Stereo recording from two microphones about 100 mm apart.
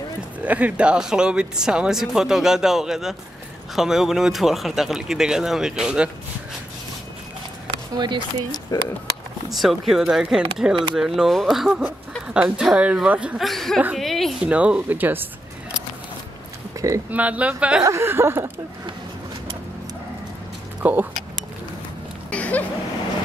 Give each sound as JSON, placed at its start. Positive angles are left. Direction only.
{"t": 0.4, "sound": "speech", "side_deg": -15}
{"t": 7.9, "sound": "speech", "side_deg": -45}
{"t": 8.7, "sound": "speech", "side_deg": 35}
{"t": 9.5, "sound": "speech", "side_deg": 0}
{"t": 12.4, "sound": "speech", "side_deg": -15}
{"t": 13.4, "sound": "speech", "side_deg": 0}
{"t": 13.9, "sound": "a sound", "side_deg": 0}
{"t": 14.4, "sound": "speech", "side_deg": -10}
{"t": 16.8, "sound": "a sound", "side_deg": -35}
{"t": 17.1, "sound": "speech", "side_deg": -15}
{"t": 17.8, "sound": "speech", "side_deg": -25}
{"t": 20.8, "sound": "speech", "side_deg": -20}
{"t": 22.3, "sound": "a sound", "side_deg": 15}